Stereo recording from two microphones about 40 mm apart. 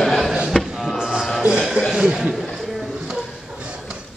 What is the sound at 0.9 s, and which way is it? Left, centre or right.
Music, centre.